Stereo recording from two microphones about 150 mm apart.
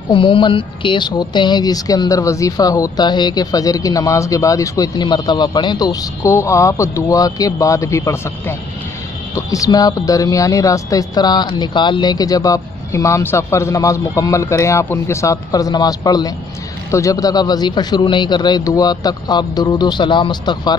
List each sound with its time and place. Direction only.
0.1 s speech: 35° left (ahead or behind)